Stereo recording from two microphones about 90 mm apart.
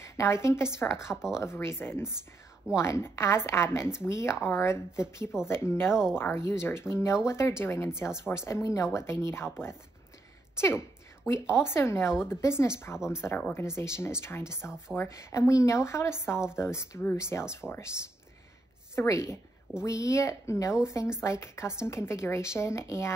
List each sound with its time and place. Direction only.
0.0 s a woman's voice: 30° left (ahead or behind)
1.1 s speech: 5° right (ahead or behind)
1.4 s speech: 30° left (ahead or behind)
11.2 s speech: 30° left (ahead or behind)
18.9 s speech: 35° left (ahead or behind)